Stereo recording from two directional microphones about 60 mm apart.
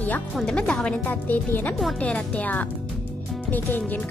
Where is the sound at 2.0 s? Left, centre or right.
Left.